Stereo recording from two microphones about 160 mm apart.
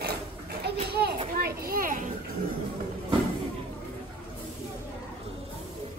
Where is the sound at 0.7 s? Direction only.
90° right.